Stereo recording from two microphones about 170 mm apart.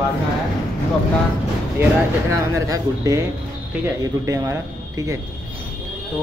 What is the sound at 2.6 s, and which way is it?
Speech, 20° right (ahead or behind).